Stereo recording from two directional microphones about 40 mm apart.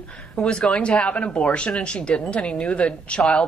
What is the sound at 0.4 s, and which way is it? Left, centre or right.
A woman's voice, left.